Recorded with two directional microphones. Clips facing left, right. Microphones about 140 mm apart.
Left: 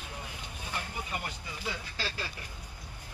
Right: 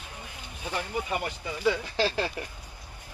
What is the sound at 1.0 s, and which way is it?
Speech, 85° right.